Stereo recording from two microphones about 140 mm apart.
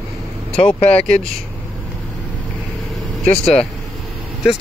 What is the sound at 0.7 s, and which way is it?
Speech, 10° left (ahead or behind).